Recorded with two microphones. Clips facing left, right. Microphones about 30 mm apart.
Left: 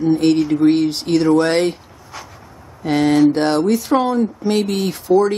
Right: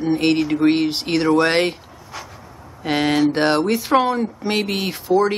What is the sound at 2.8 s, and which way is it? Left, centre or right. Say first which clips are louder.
Speech: left 4 dB; right.